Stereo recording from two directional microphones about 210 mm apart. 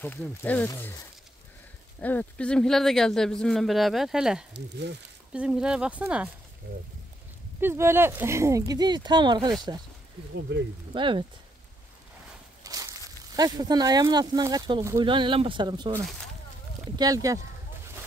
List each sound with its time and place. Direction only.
0.0 s speech: 10° left (ahead or behind)
4.6 s speech: 55° right (ahead or behind)
5.3 s speech: 5° right (ahead or behind)
7.6 s speech: 10° right (ahead or behind)
10.9 s speech: 25° right (ahead or behind)
12.6 s a sound: 15° right (ahead or behind)
13.4 s speech: 20° right (ahead or behind)
17.0 s speech: 15° right (ahead or behind)